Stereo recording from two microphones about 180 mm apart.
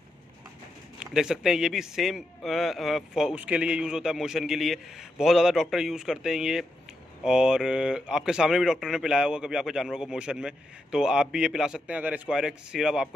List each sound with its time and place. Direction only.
0.9 s speech: 5° right (ahead or behind)